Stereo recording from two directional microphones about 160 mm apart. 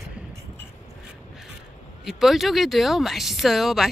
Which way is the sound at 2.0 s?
Centre (ahead or behind).